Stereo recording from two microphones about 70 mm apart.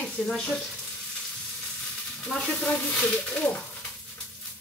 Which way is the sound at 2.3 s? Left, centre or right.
Centre.